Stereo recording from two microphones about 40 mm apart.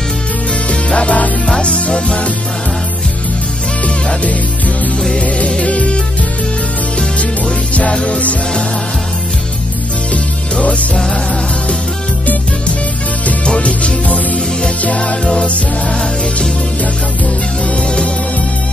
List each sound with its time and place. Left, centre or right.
0.7 s music: left
3.8 s music: left
7.0 s music: left
10.6 s music: left
13.6 s music: left
17.6 s music: left